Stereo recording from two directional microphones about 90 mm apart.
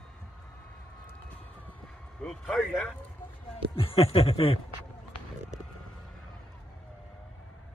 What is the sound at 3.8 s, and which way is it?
Speech, 90° left.